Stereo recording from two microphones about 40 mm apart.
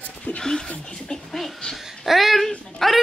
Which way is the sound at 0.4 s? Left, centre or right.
Centre.